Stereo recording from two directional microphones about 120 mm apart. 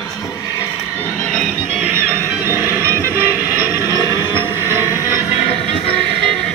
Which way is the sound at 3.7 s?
30° left (ahead or behind).